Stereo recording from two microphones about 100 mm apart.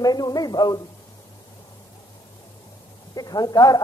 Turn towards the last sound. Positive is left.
turn(degrees=40)  # may be behind; listen again after turning